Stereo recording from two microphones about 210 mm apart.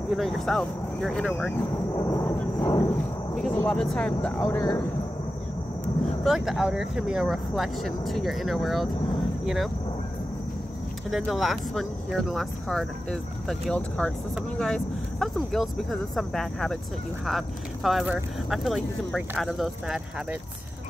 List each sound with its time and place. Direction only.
0.1 s speech: centre (ahead or behind)
2.0 s a sound: 15° left (ahead or behind)
3.3 s speech: 5° left (ahead or behind)
6.2 s speech: centre (ahead or behind)
11.1 s speech: centre (ahead or behind)